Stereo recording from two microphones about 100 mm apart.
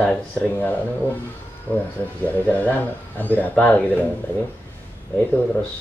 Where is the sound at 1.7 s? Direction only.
15° left (ahead or behind).